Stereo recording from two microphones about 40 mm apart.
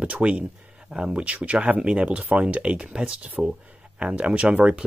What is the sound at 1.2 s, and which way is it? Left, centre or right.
Speech, right.